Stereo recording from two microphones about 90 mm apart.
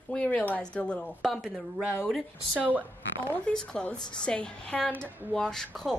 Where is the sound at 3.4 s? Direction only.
10° left (ahead or behind).